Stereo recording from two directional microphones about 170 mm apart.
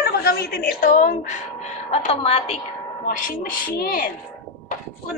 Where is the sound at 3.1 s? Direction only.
55° left (ahead or behind).